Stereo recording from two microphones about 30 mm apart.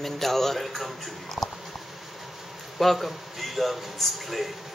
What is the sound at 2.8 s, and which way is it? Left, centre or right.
A man's voice, centre.